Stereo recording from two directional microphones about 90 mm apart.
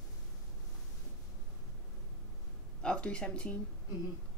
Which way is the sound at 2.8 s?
10° left (ahead or behind).